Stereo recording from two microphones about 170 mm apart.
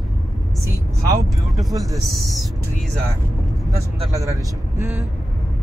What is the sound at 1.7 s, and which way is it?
Speech, 20° right (ahead or behind).